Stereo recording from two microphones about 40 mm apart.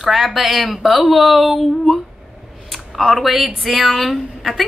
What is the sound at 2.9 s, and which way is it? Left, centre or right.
A woman's voice, centre.